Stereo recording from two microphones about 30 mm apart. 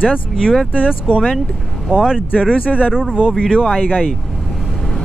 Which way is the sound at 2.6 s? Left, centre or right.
Left.